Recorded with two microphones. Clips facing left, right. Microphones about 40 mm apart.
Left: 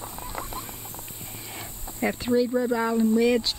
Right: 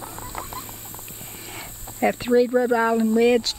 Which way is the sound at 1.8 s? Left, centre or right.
Centre.